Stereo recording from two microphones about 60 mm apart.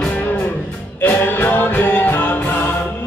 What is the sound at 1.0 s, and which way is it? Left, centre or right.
Music, left.